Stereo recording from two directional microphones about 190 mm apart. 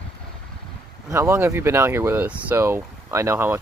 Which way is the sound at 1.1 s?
15° right (ahead or behind).